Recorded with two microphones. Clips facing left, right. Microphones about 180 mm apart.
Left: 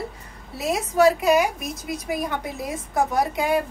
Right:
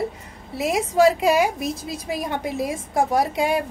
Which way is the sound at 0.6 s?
25° right (ahead or behind).